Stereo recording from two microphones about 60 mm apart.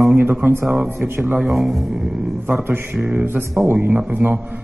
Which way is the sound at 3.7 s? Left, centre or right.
Right.